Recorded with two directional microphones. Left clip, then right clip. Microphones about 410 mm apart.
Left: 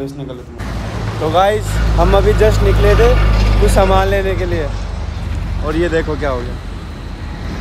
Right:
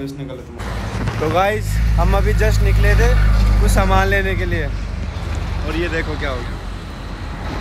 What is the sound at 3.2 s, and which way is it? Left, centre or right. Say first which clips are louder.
Vehicle: left 5 dB; left.